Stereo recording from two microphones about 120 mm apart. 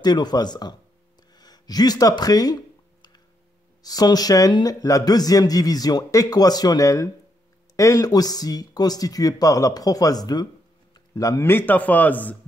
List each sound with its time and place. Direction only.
0.0 s speech: 35° left (ahead or behind)
1.3 s a sound: 35° left (ahead or behind)
3.8 s a man's voice: 30° left (ahead or behind); by 12.4 s 15° left (ahead or behind)